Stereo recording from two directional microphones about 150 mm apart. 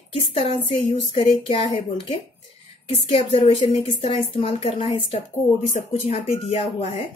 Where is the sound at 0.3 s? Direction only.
40° left (ahead or behind).